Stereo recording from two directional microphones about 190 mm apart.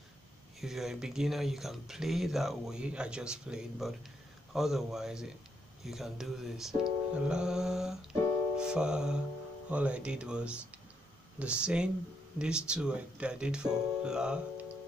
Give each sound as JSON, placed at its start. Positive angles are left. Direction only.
{"t": 0.6, "sound": "speech", "side_deg": 0}